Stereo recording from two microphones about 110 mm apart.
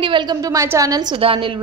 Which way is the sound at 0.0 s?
45° right (ahead or behind).